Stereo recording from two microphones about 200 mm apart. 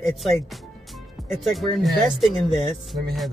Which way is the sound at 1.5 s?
Centre (ahead or behind).